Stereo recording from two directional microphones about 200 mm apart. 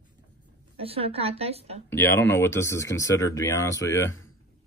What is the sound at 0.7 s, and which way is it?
A woman's voice, 30° right (ahead or behind).